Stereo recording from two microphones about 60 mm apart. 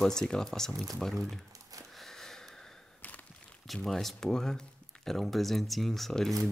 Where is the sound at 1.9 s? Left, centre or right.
Centre.